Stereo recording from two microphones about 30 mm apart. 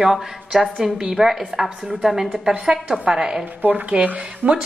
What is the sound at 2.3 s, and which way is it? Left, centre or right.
A woman's voice, right.